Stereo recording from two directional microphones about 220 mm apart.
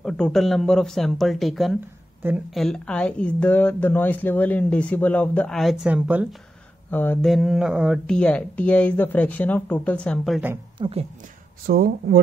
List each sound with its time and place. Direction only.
0.0 s speech: centre (ahead or behind)
6.9 s speech: 10° left (ahead or behind)
10.8 s speech: 25° right (ahead or behind)
11.6 s speech: 45° right (ahead or behind)